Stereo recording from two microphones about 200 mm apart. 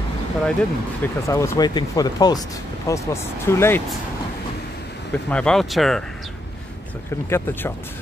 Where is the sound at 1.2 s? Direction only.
15° left (ahead or behind).